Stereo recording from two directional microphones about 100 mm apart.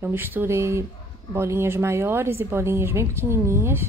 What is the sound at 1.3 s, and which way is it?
Speech, 25° right (ahead or behind).